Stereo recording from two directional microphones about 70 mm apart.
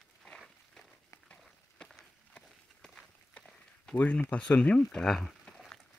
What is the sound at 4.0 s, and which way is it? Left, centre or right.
Speech, left.